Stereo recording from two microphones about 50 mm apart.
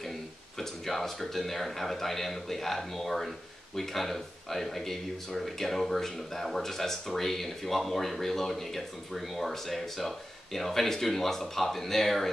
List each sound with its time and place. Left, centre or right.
0.6 s speech: centre